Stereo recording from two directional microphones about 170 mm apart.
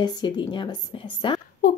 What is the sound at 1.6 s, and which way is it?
Speech, 55° left (ahead or behind).